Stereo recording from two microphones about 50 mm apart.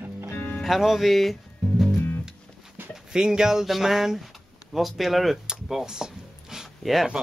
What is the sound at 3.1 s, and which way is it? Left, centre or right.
Speech, centre.